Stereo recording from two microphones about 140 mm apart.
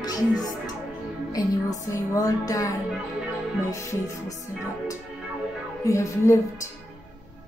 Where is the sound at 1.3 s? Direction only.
25° left (ahead or behind).